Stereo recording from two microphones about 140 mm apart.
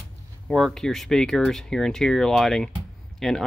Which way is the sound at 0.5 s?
Centre (ahead or behind).